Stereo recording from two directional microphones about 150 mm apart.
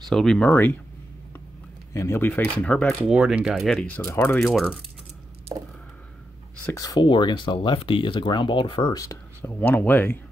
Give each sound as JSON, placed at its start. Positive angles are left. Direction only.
{"t": 0.1, "sound": "speech", "side_deg": 5}
{"t": 2.0, "sound": "speech", "side_deg": 15}
{"t": 3.0, "sound": "speech", "side_deg": -10}
{"t": 4.4, "sound": "speech", "side_deg": 0}
{"t": 6.6, "sound": "speech", "side_deg": 20}
{"t": 9.0, "sound": "speech", "side_deg": 15}